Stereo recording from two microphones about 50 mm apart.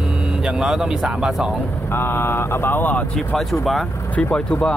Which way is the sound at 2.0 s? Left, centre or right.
Left.